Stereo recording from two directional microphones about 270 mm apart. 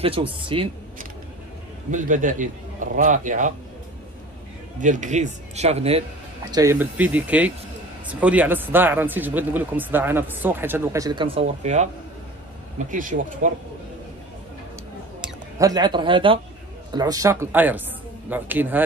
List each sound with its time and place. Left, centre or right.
0.0 s a man's voice: centre
1.9 s a man's voice: right
4.7 s a man's voice: right
6.5 s a man's voice: centre; by 13.5 s right
15.6 s speech: centre